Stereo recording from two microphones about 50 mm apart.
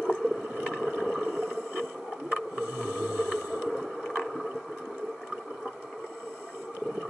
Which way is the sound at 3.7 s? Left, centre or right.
Centre.